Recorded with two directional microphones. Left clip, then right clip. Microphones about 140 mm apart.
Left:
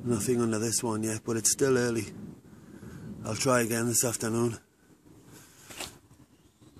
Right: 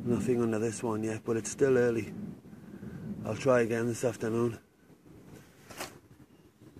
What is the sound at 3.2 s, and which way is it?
Speech, 50° left (ahead or behind).